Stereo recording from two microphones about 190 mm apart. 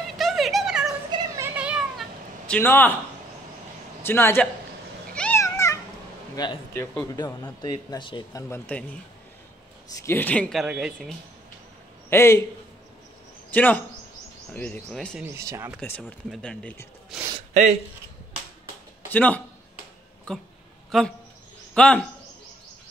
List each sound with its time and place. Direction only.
0.2 s a sound: centre (ahead or behind)
1.1 s cat: 15° right (ahead or behind); by 2.9 s 10° left (ahead or behind)
4.0 s speech: 10° left (ahead or behind)
5.1 s cat: 5° left (ahead or behind)
6.3 s speech: 20° left (ahead or behind)
10.0 s speech: 10° left (ahead or behind)
12.1 s speech: 15° left (ahead or behind)
13.5 s speech: 10° left (ahead or behind)
15.2 s speech: 15° right (ahead or behind)
15.8 s speech: 5° left (ahead or behind)
19.0 s a man's voice: 10° left (ahead or behind)